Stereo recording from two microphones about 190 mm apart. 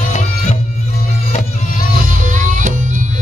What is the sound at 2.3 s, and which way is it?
Music, 40° right (ahead or behind).